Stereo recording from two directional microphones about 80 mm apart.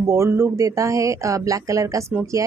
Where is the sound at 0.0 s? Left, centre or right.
Right.